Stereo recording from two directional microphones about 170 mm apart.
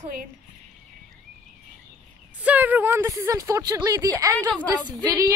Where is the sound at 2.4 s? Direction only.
10° right (ahead or behind).